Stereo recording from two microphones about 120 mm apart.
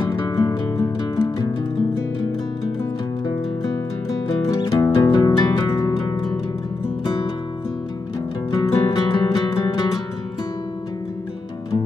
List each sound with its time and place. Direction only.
0.1 s music: 30° left (ahead or behind)
4.3 s music: 35° left (ahead or behind)
8.5 s music: 35° left (ahead or behind)